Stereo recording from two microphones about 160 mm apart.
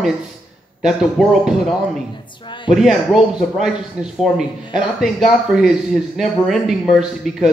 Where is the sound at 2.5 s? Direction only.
30° left (ahead or behind).